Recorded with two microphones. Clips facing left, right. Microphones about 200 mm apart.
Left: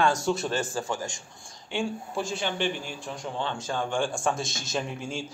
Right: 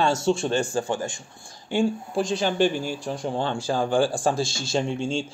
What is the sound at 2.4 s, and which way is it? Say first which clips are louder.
Speech: right 9 dB; 40° right (ahead or behind).